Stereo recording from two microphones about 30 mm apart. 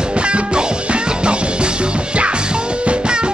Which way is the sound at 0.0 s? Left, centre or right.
Right.